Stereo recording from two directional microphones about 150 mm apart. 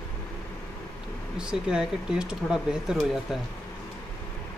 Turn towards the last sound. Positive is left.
turn(degrees=-5)  # may be behind; listen again after turning